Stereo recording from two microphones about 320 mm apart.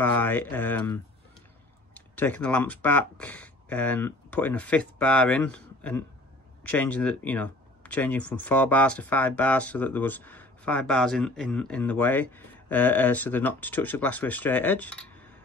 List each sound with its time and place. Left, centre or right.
0.0 s speech: centre